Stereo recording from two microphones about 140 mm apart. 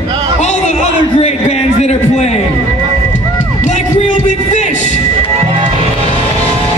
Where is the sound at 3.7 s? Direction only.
55° left (ahead or behind).